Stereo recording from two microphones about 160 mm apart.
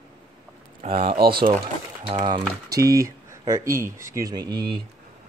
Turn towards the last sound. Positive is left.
turn(degrees=-25)  # may be behind; listen again after turning